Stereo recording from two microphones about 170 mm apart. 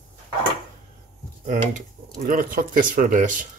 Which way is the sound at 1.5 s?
50° right (ahead or behind).